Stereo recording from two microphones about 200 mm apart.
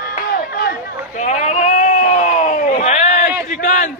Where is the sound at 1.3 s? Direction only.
35° left (ahead or behind).